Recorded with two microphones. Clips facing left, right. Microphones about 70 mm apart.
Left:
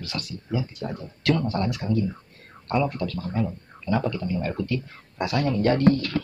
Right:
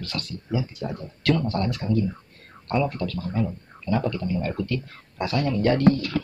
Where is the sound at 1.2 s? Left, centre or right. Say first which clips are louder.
Even; left.